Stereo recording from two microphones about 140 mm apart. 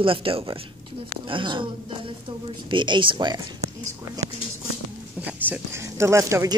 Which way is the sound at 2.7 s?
35° right (ahead or behind).